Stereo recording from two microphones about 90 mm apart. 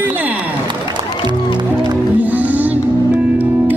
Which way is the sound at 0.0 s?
20° right (ahead or behind).